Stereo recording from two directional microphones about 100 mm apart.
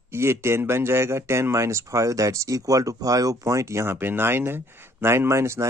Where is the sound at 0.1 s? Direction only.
25° right (ahead or behind).